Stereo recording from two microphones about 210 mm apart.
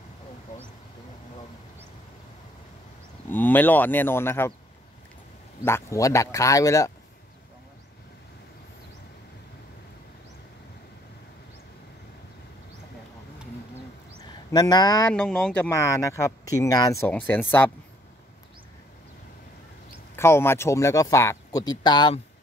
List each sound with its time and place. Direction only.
3.3 s speech: 10° left (ahead or behind)
5.6 s speech: 10° left (ahead or behind)
14.5 s speech: 20° left (ahead or behind)
15.1 s speech: 5° left (ahead or behind)
20.2 s speech: 10° left (ahead or behind)